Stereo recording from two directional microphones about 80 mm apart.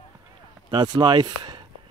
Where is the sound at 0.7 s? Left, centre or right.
Right.